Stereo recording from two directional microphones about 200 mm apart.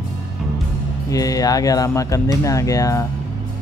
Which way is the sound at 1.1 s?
15° left (ahead or behind).